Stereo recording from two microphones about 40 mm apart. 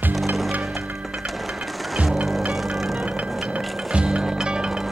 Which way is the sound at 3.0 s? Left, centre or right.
Right.